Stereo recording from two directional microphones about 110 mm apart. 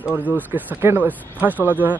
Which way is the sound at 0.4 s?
15° right (ahead or behind).